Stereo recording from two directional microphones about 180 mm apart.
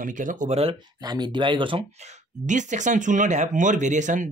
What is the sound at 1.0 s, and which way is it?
Speech, 25° right (ahead or behind).